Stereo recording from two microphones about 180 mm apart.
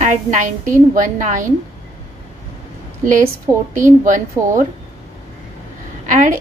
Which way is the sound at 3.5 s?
20° right (ahead or behind).